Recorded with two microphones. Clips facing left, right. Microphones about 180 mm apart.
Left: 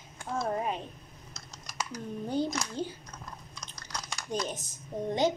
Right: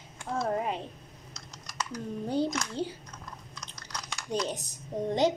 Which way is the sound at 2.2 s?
35° right (ahead or behind).